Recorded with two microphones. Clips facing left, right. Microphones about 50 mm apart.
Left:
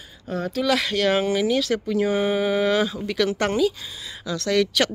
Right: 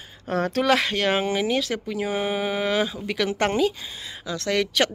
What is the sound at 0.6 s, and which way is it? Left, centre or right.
Speech, right.